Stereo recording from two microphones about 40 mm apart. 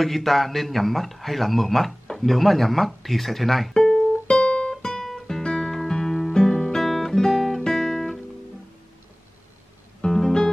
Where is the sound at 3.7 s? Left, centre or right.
Centre.